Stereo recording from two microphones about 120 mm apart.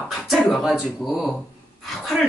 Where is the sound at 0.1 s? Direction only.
Centre (ahead or behind).